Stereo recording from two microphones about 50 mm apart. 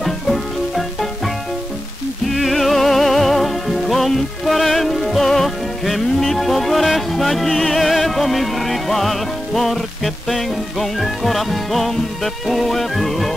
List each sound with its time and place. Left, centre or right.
0.0 s music: centre
2.2 s music: centre